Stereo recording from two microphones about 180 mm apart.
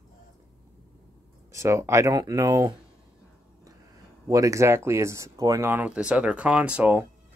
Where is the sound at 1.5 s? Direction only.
15° right (ahead or behind).